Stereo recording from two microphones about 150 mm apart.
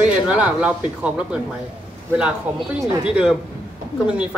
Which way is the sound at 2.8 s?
5° right (ahead or behind).